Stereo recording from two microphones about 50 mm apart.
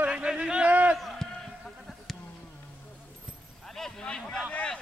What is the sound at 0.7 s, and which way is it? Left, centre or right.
Speech, right.